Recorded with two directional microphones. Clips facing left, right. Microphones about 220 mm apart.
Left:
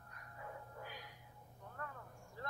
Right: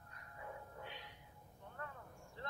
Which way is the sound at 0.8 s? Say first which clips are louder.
Even; 25° right (ahead or behind).